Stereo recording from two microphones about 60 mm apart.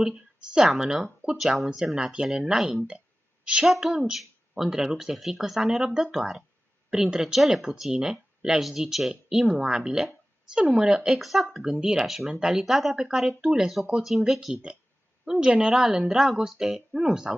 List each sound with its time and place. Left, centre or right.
0.0 s speech: centre
11.1 s speech: centre
14.5 s speech: centre